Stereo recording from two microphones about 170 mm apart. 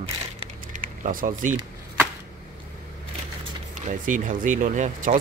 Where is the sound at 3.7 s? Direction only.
50° right (ahead or behind).